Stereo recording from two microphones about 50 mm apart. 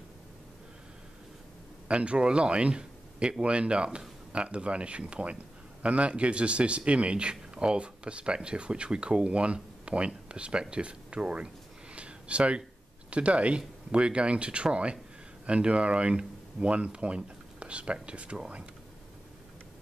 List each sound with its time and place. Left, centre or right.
1.9 s a man's voice: right